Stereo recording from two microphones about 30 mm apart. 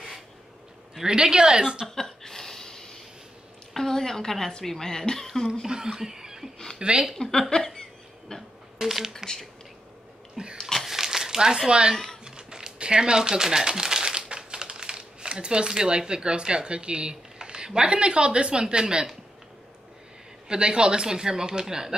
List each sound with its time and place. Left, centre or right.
1.0 s speech: right
1.9 s a sound: centre
3.7 s a woman's voice: centre
5.9 s chuckle: centre
6.8 s a woman's voice: right
7.2 s speech: centre
8.7 s speech: centre
9.1 s a woman's voice: centre
10.3 s a sound: right
10.6 s a sound: centre
10.9 s a sound: centre; by 11.9 s right
12.3 s speech: right
20.4 s speech: right